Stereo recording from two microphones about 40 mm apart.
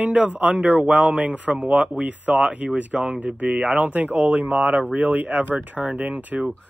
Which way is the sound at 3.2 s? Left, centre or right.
Right.